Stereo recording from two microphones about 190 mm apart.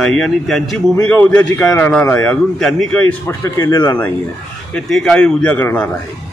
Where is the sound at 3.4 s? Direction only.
15° left (ahead or behind).